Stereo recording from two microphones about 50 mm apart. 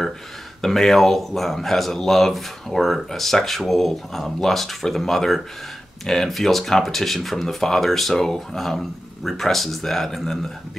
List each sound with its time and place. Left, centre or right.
0.6 s speech: centre